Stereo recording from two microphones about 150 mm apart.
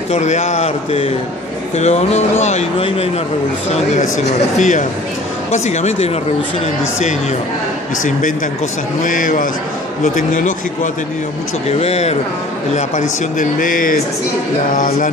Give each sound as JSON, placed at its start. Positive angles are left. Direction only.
{"t": 0.1, "sound": "speech", "side_deg": 50}
{"t": 9.0, "sound": "a man's voice", "side_deg": 60}
{"t": 11.8, "sound": "speech", "side_deg": 45}
{"t": 12.7, "sound": "a man's voice", "side_deg": 60}